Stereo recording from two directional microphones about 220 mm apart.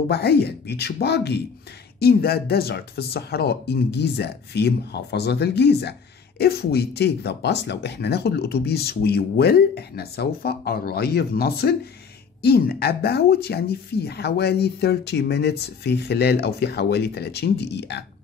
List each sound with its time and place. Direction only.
0.1 s speech: 45° left (ahead or behind)